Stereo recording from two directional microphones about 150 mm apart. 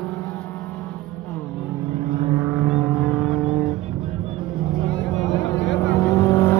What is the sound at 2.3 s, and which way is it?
Vehicle, 10° right (ahead or behind).